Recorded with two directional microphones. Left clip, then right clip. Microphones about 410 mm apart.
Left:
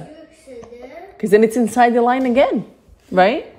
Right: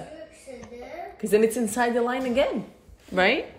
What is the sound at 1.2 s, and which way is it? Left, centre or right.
A woman's voice, centre.